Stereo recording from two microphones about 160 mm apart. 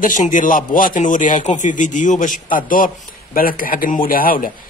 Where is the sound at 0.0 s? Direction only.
55° left (ahead or behind).